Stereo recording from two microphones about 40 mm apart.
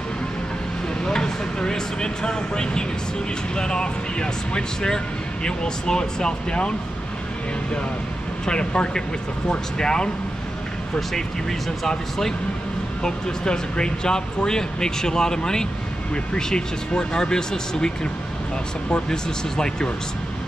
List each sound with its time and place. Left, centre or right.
1.0 s speech: centre
8.5 s speech: left
11.9 s speech: centre
13.0 s speech: left
19.0 s speech: centre